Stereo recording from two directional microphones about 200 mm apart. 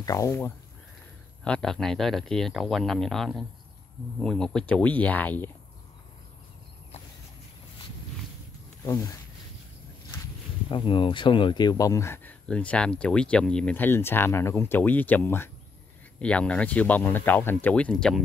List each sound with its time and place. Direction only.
0.0 s speech: 15° left (ahead or behind)
1.4 s speech: 5° left (ahead or behind)
8.8 s speech: 15° left (ahead or behind)
10.7 s speech: 25° left (ahead or behind); by 18.2 s 5° left (ahead or behind)